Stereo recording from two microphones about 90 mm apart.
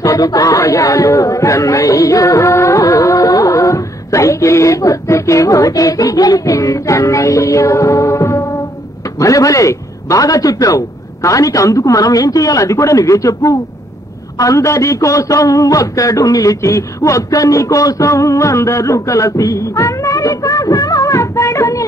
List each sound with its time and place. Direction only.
0.0 s a man's voice: 40° left (ahead or behind)
18.9 s music: 35° left (ahead or behind)